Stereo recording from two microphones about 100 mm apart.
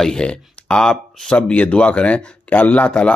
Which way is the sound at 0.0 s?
10° left (ahead or behind).